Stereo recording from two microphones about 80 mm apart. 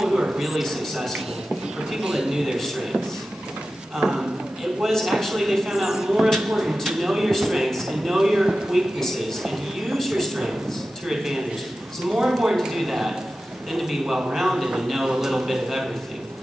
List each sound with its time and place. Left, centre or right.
0.0 s a sound: centre
0.5 s speech: centre
4.0 s speech: centre